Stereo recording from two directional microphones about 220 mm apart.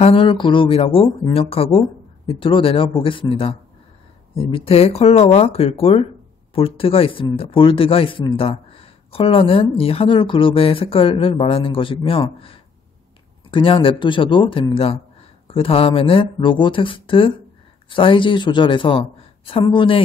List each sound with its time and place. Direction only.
0.0 s speech: 25° left (ahead or behind)